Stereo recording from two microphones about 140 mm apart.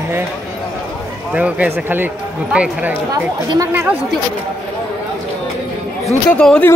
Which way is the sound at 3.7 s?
15° right (ahead or behind).